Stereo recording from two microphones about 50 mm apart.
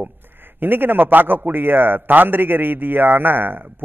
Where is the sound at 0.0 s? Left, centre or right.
Right.